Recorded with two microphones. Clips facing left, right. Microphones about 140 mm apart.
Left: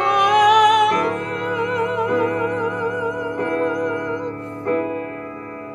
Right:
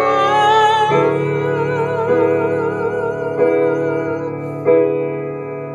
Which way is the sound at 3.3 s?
40° right (ahead or behind).